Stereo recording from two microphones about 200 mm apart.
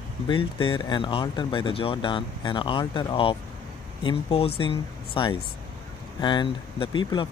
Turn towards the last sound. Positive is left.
turn(degrees=25)  # may be behind; listen again after turning